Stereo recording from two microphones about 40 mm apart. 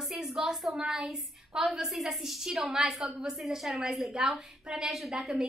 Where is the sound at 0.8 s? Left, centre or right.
Centre.